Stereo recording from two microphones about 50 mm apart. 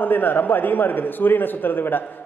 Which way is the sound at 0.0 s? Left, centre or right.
Left.